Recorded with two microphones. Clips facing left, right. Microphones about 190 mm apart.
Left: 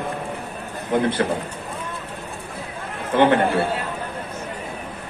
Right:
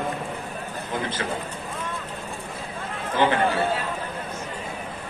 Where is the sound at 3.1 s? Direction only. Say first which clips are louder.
Left 5 dB; 65° left (ahead or behind).